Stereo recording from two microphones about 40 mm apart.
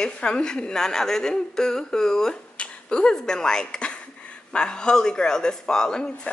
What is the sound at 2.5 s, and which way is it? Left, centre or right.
Speech, left.